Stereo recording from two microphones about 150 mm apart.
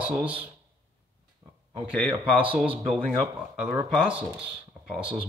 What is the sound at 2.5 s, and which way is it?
Speech, 10° right (ahead or behind).